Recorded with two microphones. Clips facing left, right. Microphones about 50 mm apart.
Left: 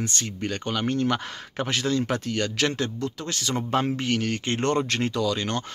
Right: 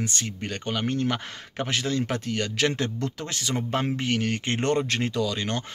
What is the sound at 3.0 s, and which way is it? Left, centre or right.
Speech, right.